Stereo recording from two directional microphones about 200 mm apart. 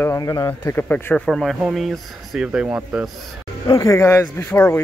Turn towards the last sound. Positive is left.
turn(degrees=10)  # may be behind; listen again after turning